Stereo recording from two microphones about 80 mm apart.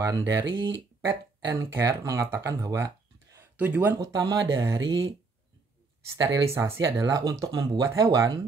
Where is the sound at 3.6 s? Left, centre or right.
Right.